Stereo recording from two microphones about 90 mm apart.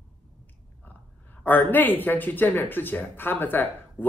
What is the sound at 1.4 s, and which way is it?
Speech, 20° left (ahead or behind).